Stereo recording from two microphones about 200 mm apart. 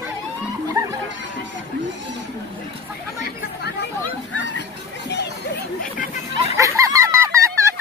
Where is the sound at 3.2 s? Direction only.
55° left (ahead or behind).